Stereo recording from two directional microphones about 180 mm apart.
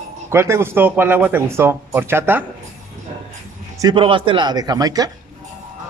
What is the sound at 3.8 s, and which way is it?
Speech, 25° right (ahead or behind).